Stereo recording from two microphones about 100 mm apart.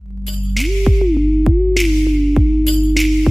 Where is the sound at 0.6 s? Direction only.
Centre (ahead or behind).